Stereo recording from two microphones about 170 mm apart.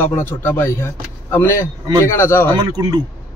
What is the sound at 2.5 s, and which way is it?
Speech, 25° right (ahead or behind).